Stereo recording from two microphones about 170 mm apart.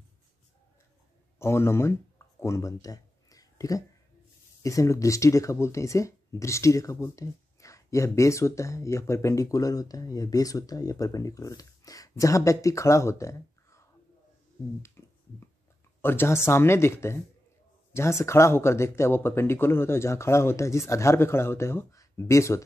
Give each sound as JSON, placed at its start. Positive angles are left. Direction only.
{"t": 1.4, "sound": "speech", "side_deg": 15}
{"t": 14.8, "sound": "finger snapping", "side_deg": 15}
{"t": 16.0, "sound": "speech", "side_deg": 10}